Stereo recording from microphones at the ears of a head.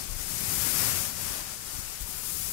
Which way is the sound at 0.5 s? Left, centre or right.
Left.